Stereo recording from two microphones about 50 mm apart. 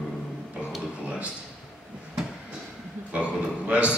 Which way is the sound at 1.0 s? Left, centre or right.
Right.